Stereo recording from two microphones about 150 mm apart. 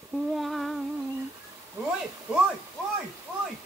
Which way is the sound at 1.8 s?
15° right (ahead or behind).